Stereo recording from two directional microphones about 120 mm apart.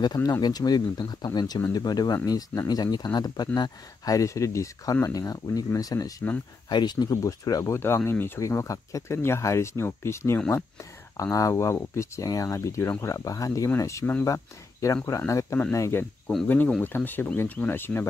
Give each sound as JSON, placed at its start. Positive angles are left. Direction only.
{"t": 0.0, "sound": "speech", "side_deg": 30}